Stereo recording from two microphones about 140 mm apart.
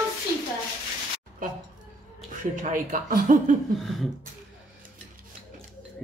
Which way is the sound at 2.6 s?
70° right (ahead or behind).